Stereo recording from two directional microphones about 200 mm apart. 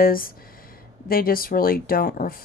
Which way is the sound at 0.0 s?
45° left (ahead or behind).